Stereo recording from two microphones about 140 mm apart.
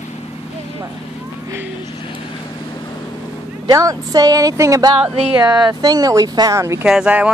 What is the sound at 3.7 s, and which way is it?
Speech, 25° right (ahead or behind).